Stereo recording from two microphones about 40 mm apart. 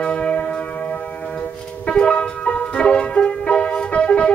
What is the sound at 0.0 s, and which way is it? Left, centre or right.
Music, left.